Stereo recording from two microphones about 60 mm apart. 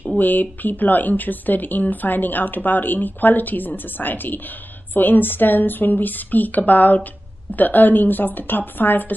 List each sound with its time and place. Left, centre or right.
0.2 s a woman's voice: left